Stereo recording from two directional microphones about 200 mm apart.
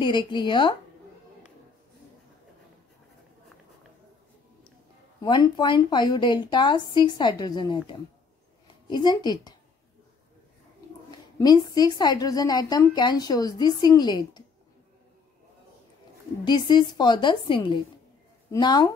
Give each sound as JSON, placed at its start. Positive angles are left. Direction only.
{"t": 0.0, "sound": "a woman's voice", "side_deg": 25}
{"t": 5.2, "sound": "a woman's voice", "side_deg": 20}
{"t": 11.1, "sound": "a woman's voice", "side_deg": 20}
{"t": 16.4, "sound": "a woman's voice", "side_deg": 20}